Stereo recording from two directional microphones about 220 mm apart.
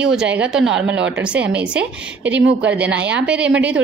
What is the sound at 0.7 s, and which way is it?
Speech, 55° right (ahead or behind).